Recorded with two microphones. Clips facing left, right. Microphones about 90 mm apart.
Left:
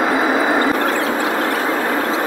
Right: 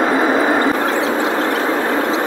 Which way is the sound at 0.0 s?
Centre (ahead or behind).